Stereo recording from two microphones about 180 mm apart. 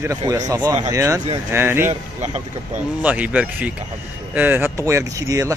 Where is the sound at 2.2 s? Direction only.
40° right (ahead or behind).